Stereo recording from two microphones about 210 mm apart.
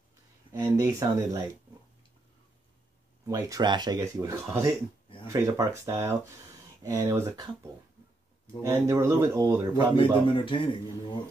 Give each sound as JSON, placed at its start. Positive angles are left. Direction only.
{"t": 0.5, "sound": "speech", "side_deg": -15}
{"t": 3.3, "sound": "speech", "side_deg": -15}
{"t": 8.6, "sound": "speech", "side_deg": -15}
{"t": 10.2, "sound": "a man's voice", "side_deg": 25}